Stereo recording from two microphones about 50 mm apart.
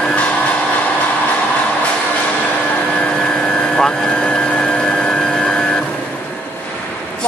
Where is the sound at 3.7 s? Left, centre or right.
Centre.